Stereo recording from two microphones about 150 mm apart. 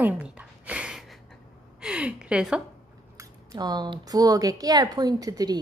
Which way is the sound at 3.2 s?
25° right (ahead or behind).